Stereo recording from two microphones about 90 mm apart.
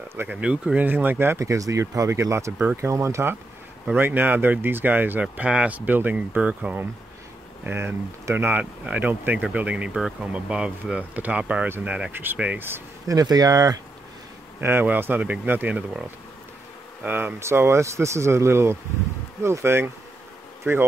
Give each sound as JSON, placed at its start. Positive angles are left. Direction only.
{"t": 0.3, "sound": "speech", "side_deg": -10}
{"t": 3.9, "sound": "speech", "side_deg": -20}
{"t": 13.1, "sound": "speech", "side_deg": -45}
{"t": 14.6, "sound": "speech", "side_deg": -20}
{"t": 17.4, "sound": "speech", "side_deg": -30}